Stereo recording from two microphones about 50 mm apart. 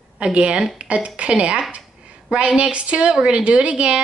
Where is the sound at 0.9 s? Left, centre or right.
Right.